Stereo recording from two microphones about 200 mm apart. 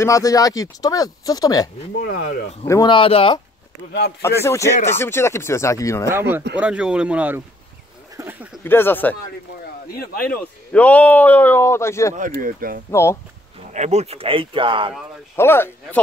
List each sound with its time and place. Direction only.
0.0 s speech: 15° left (ahead or behind)
2.0 s speech: 50° left (ahead or behind)
2.6 s speech: 20° left (ahead or behind)
4.2 s speech: 15° left (ahead or behind)
6.0 s speech: 10° right (ahead or behind)
8.6 s speech: 10° left (ahead or behind)
9.9 s speech: 45° left (ahead or behind)
10.7 s speech: 5° left (ahead or behind)
12.3 s speech: 45° right (ahead or behind)
12.9 s speech: 15° left (ahead or behind)
13.7 s speech: 35° right (ahead or behind)
15.3 s speech: 10° left (ahead or behind)